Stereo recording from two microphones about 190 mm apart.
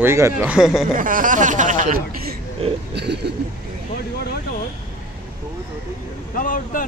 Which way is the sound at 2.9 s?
60° right (ahead or behind).